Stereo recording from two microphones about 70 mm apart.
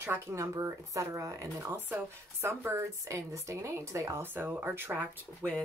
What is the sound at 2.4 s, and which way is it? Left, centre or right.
Speech, right.